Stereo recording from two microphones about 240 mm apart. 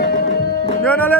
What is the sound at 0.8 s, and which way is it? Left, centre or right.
Music, centre.